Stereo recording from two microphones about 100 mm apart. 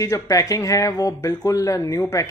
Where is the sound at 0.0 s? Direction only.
35° left (ahead or behind).